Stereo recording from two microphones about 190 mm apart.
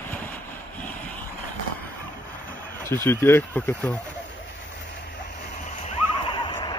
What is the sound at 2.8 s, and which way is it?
Speech, 10° left (ahead or behind).